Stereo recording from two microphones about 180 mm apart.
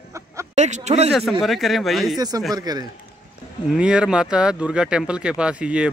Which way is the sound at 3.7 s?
5° right (ahead or behind).